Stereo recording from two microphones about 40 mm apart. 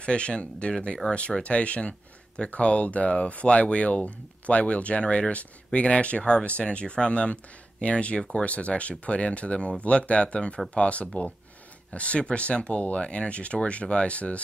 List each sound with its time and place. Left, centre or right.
0.0 s speech: left